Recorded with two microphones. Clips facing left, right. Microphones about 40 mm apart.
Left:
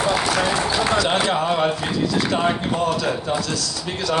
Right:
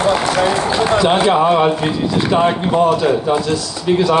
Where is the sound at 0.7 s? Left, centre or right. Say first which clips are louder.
Right 6 dB; right.